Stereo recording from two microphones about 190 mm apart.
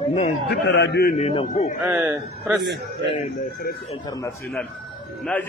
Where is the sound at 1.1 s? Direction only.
30° left (ahead or behind).